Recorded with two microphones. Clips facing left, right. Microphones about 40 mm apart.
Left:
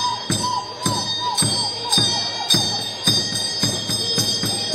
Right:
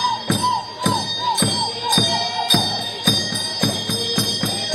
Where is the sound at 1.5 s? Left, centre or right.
Right.